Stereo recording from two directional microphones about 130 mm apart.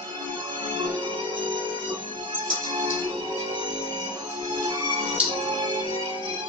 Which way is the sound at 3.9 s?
35° right (ahead or behind).